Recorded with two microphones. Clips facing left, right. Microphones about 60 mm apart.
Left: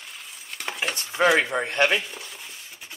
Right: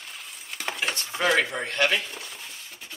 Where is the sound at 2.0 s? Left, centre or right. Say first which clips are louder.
Even; centre.